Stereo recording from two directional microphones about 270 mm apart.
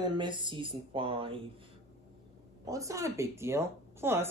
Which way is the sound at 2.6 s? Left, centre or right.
Centre.